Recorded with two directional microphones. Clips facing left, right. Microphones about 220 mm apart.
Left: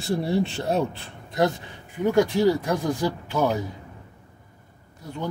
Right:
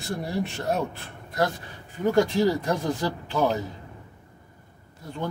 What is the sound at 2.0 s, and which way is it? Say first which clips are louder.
Speech: left 2 dB; 10° left (ahead or behind).